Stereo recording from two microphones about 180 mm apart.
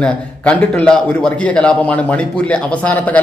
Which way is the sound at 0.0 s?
5° left (ahead or behind).